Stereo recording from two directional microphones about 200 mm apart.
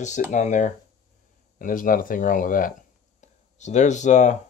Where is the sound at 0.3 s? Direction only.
40° left (ahead or behind).